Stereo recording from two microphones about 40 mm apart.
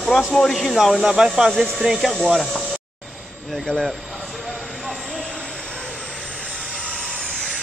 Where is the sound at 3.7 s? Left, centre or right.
Centre.